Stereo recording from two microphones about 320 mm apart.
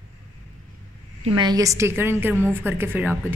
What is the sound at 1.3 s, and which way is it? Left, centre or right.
A woman's voice, centre.